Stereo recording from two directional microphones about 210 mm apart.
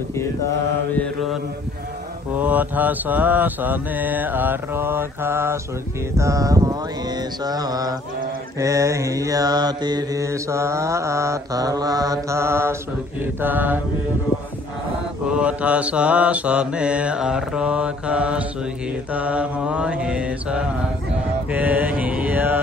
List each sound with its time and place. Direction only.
0.9 s mantra: centre (ahead or behind)
15.2 s mantra: 5° right (ahead or behind)